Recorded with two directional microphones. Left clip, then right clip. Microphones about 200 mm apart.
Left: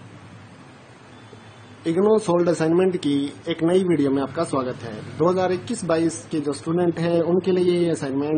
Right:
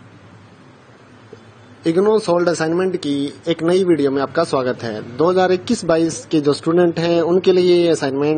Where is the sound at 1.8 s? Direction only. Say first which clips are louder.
Right 4 dB; 30° right (ahead or behind).